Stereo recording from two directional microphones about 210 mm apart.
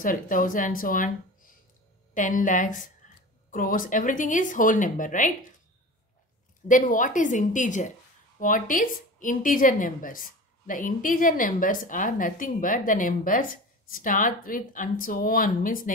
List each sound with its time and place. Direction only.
0.0 s a woman's voice: 40° left (ahead or behind)
6.7 s a woman's voice: 40° left (ahead or behind)